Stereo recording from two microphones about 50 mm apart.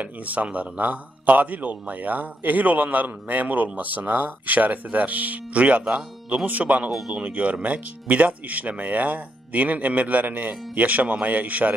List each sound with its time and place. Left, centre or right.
0.0 s a man's voice: right
6.9 s speech: centre
7.2 s a man's voice: right